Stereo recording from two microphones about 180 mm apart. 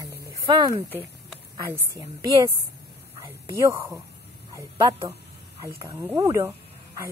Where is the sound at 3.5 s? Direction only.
15° right (ahead or behind).